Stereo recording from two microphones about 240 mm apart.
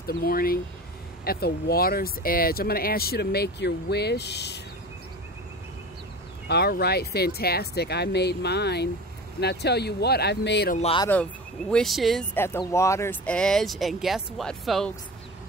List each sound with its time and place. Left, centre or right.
0.0 s speech: left
6.5 s speech: left
10.8 s speech: left
11.7 s speech: centre